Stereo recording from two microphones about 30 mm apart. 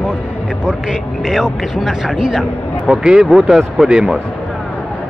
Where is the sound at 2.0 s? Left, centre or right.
Right.